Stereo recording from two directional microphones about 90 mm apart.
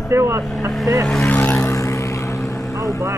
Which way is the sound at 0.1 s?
30° right (ahead or behind).